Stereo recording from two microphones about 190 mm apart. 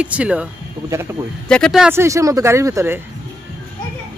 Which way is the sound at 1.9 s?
15° right (ahead or behind).